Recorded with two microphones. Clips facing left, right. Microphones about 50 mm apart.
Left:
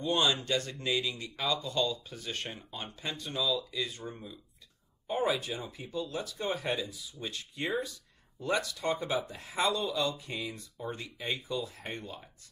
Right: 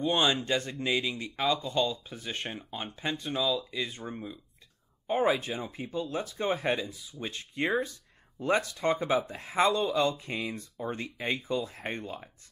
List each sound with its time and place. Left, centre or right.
0.0 s speech: right